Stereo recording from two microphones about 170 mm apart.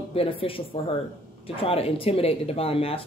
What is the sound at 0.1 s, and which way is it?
Speech, 35° left (ahead or behind).